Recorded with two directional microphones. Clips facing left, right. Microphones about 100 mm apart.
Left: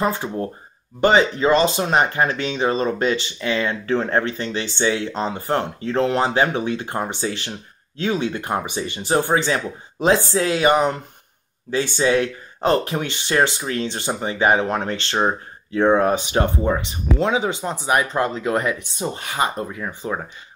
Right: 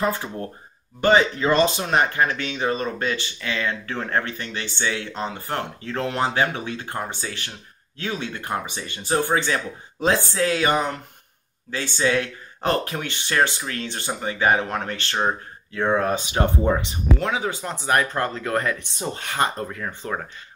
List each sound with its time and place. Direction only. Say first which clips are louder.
0.0 s speech: left 3 dB; 20° left (ahead or behind)
17.2 s speech: left 5 dB; 20° left (ahead or behind)